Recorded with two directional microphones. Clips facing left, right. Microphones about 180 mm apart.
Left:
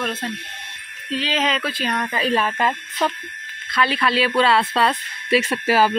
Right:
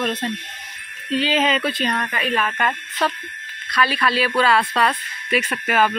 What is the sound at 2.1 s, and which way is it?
Speech, 30° left (ahead or behind).